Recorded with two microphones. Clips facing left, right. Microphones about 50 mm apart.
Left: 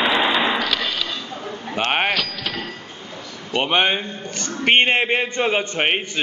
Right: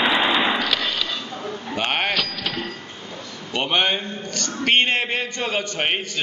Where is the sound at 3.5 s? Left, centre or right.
Centre.